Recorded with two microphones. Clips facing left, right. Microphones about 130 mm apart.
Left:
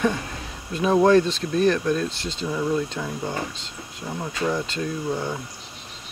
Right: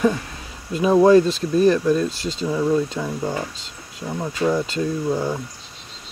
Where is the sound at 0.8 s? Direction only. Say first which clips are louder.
Right 4 dB; 5° right (ahead or behind).